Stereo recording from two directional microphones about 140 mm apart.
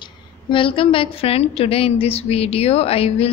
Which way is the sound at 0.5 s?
40° left (ahead or behind).